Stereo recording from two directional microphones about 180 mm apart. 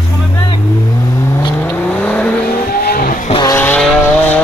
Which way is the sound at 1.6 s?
10° left (ahead or behind).